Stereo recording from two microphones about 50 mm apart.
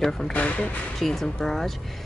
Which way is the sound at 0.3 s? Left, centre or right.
Left.